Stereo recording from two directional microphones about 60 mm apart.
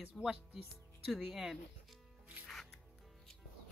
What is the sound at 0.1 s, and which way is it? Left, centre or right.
Speech, centre.